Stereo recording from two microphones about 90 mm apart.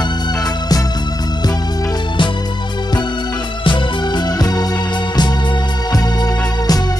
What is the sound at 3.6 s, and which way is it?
Music, 65° left (ahead or behind).